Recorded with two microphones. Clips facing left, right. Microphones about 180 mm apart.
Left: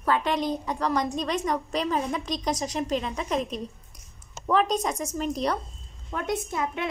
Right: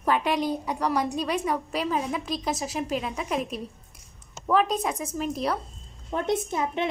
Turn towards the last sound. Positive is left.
turn(degrees=-25)  # may be behind; listen again after turning